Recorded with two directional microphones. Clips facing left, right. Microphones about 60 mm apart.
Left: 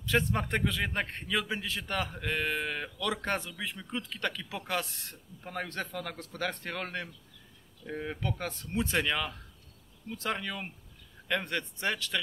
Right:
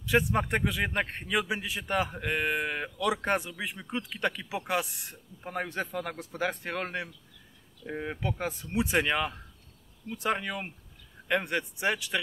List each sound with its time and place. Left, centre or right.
0.0 s a man's voice: centre